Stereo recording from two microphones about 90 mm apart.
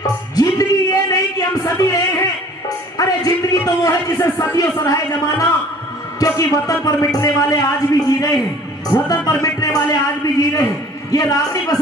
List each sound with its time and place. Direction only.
0.0 s music: 45° left (ahead or behind)
3.0 s a sound: 40° left (ahead or behind)
4.7 s a man's voice: 40° left (ahead or behind)